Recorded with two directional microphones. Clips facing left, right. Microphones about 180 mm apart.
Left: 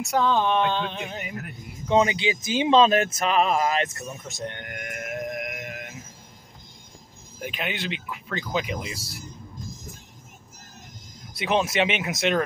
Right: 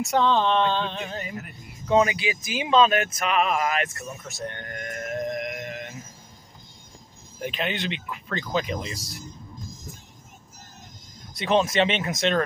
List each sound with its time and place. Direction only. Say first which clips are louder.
0.0 s speech: right 1 dB; 5° left (ahead or behind)
7.3 s speech: right 3 dB; 5° left (ahead or behind)
11.3 s speech: right 2 dB; 10° left (ahead or behind)